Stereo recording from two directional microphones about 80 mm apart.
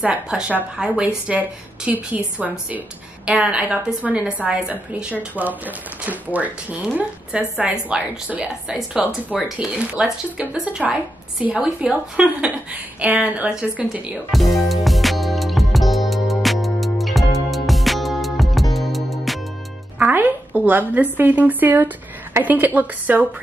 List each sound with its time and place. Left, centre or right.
0.0 s a woman's voice: centre
14.1 s music: centre
20.0 s a woman's voice: right